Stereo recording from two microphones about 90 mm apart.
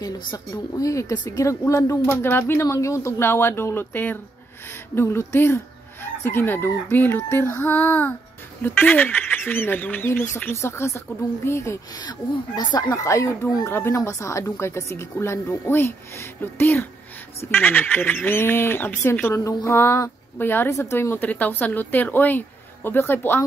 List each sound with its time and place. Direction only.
0.0 s speech: 40° left (ahead or behind)
1.1 s a woman's voice: 55° left (ahead or behind)
1.6 s a woman's voice: 35° left (ahead or behind)
12.0 s a woman's voice: 50° left (ahead or behind); by 23.4 s 25° left (ahead or behind)